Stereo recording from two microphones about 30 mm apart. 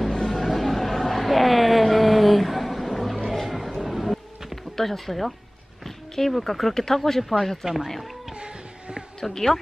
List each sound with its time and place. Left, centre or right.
0.1 s a sound: centre
3.3 s music: centre
4.7 s speech: centre
7.6 s speech: centre
8.4 s a sound: right
9.3 s speech: centre